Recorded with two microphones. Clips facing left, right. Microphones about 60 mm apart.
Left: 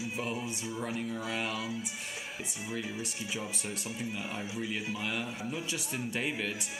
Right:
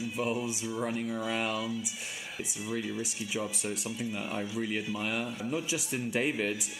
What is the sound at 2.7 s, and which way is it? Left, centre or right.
Speech, centre.